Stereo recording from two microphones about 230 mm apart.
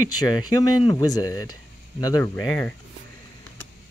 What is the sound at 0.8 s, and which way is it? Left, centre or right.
Speech, centre.